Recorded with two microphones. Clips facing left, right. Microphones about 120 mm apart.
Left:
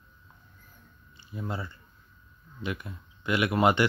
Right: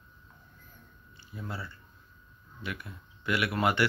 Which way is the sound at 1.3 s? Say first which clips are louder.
Left 5 dB; 20° left (ahead or behind).